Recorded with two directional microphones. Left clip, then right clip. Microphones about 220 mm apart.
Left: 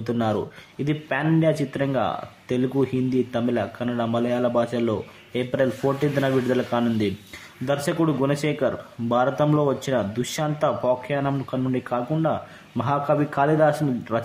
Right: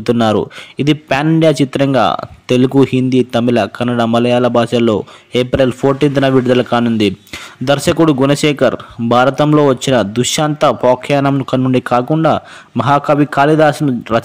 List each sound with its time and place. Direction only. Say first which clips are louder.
0.0 s speech: right 12 dB; 40° right (ahead or behind)